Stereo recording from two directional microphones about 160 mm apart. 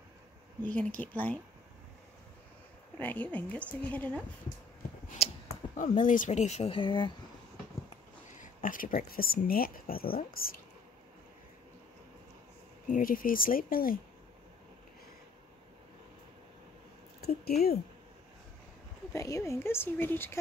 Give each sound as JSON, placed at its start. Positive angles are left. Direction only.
{"t": 0.6, "sound": "speech", "side_deg": 10}
{"t": 3.0, "sound": "speech", "side_deg": 10}
{"t": 5.8, "sound": "speech", "side_deg": 55}
{"t": 8.4, "sound": "speech", "side_deg": 55}
{"t": 12.9, "sound": "speech", "side_deg": 60}
{"t": 17.2, "sound": "a sound", "side_deg": 75}
{"t": 19.1, "sound": "speech", "side_deg": 20}